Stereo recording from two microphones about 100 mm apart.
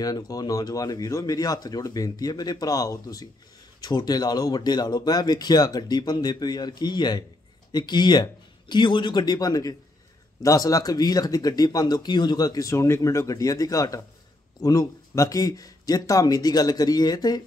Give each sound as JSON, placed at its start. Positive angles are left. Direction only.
{"t": 0.0, "sound": "speech", "side_deg": 40}